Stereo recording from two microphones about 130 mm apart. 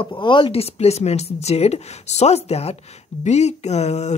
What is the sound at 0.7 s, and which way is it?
Speech, 55° left (ahead or behind).